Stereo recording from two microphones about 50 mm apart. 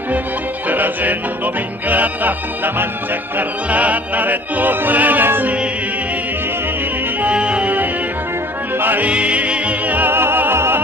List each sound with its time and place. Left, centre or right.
0.7 s music: right
7.2 s music: right
8.7 s music: right
9.0 s music: right
10.1 s music: right